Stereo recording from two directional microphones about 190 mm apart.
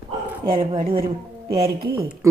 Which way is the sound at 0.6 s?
30° right (ahead or behind).